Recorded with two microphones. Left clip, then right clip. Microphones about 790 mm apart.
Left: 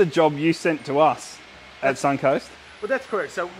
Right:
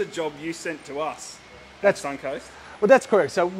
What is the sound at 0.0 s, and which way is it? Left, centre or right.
Speech, left.